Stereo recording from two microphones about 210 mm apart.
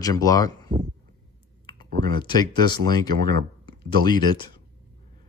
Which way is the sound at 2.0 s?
20° left (ahead or behind).